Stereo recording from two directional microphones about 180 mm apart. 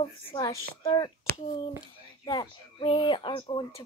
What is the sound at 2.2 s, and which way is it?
A child's voice, 30° left (ahead or behind).